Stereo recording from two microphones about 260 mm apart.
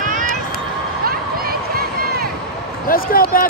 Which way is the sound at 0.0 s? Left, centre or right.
Right.